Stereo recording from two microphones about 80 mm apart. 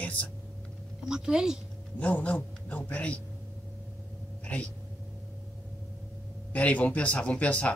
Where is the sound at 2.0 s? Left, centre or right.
Centre.